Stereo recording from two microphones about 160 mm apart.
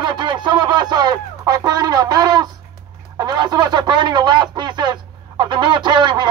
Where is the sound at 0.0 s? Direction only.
30° right (ahead or behind).